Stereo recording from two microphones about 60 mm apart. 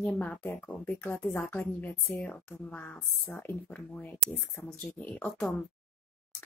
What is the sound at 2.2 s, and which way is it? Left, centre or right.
Speech, left.